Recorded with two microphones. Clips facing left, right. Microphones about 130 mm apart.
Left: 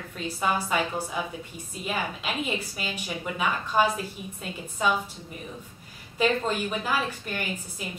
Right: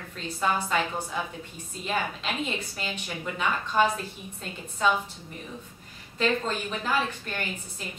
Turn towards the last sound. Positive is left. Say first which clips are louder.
# left 2 dB
turn(degrees=10)  # may be behind; listen again after turning